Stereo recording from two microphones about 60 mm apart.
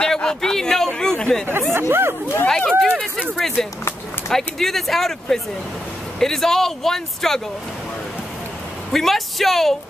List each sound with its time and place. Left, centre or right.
0.0 s speech: centre
1.7 s speech: right
2.4 s speech: centre
8.9 s speech: centre